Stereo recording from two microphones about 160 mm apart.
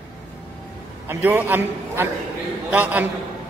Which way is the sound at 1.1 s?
10° right (ahead or behind).